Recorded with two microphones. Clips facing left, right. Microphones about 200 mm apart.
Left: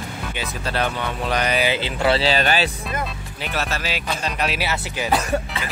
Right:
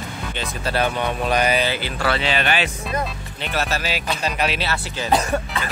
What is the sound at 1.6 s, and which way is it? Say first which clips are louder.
Speech: left 2 dB; 20° left (ahead or behind).